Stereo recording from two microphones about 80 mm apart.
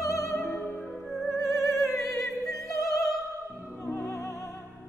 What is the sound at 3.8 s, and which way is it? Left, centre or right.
Music, left.